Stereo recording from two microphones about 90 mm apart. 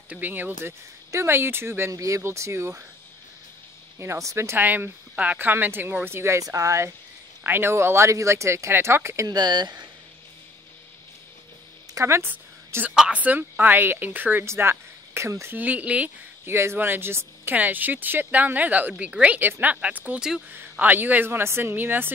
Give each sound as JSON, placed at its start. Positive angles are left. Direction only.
{"t": 0.1, "sound": "a woman's voice", "side_deg": -20}
{"t": 4.0, "sound": "a woman's voice", "side_deg": -35}
{"t": 7.4, "sound": "a woman's voice", "side_deg": -25}
{"t": 9.3, "sound": "speech", "side_deg": -50}
{"t": 11.9, "sound": "speech", "side_deg": -30}
{"t": 12.9, "sound": "a woman's voice", "side_deg": -15}
{"t": 15.5, "sound": "speech", "side_deg": -15}
{"t": 16.4, "sound": "a woman's voice", "side_deg": -30}
{"t": 20.2, "sound": "speech", "side_deg": -5}
{"t": 20.5, "sound": "a woman's voice", "side_deg": -20}